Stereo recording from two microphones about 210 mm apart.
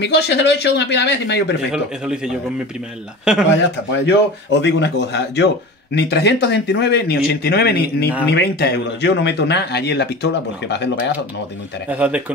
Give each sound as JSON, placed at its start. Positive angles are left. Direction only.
{"t": 0.0, "sound": "speech", "side_deg": 55}
{"t": 1.7, "sound": "speech", "side_deg": -5}
{"t": 4.0, "sound": "speech", "side_deg": 55}
{"t": 11.9, "sound": "speech", "side_deg": -5}